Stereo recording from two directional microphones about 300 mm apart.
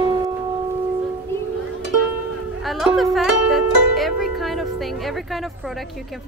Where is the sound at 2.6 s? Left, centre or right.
Centre.